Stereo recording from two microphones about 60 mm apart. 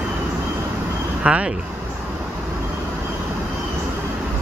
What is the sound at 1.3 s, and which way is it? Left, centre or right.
Speech, right.